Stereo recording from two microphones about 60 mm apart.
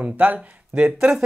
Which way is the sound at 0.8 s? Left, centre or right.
Centre.